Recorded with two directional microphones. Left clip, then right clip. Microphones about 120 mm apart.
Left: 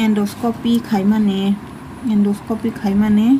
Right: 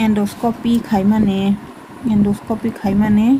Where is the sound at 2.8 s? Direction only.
20° right (ahead or behind).